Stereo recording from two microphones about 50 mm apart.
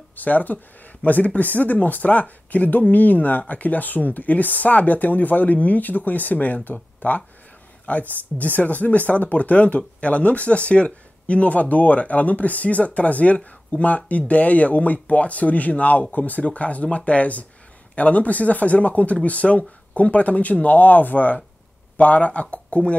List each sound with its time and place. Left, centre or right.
0.1 s speech: left